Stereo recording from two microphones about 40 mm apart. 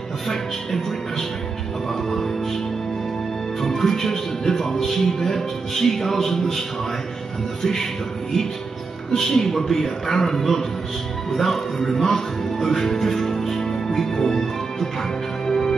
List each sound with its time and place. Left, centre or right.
0.3 s speech: centre
2.0 s music: centre
3.6 s speech: centre
9.1 s speech: centre
15.4 s music: centre